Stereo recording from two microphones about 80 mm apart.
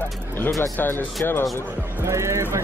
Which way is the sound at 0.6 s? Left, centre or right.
Left.